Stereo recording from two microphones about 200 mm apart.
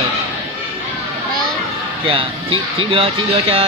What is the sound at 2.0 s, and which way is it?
Speech, 25° right (ahead or behind).